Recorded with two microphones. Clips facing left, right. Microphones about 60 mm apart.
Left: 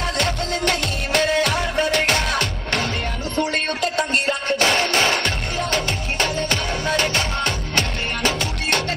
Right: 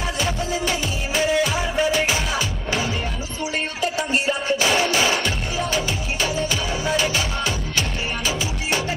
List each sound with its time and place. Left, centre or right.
0.2 s music: left
1.5 s music: centre
1.9 s music: left